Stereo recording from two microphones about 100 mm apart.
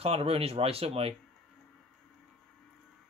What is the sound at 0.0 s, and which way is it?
Speech, 75° right (ahead or behind).